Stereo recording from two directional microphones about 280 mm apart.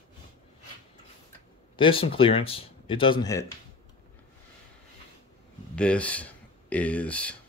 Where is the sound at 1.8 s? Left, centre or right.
Centre.